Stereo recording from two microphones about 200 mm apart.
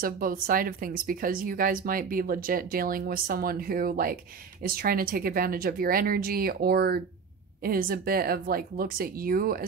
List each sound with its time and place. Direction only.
0.0 s speech: 45° right (ahead or behind)